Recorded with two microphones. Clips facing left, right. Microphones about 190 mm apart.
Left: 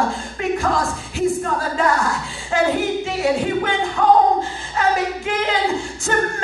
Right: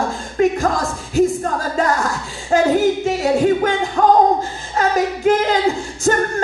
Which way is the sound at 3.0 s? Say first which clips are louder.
Right 4 dB; 40° right (ahead or behind).